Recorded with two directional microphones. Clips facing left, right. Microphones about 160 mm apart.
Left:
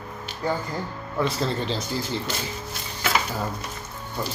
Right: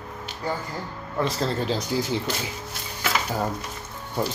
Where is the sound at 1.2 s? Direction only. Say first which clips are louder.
Even; centre (ahead or behind).